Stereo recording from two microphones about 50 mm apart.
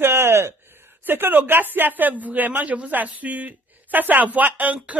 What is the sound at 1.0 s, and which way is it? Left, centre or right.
Speech, right.